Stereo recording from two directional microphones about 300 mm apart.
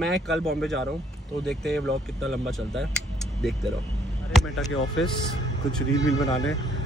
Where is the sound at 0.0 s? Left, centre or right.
Centre.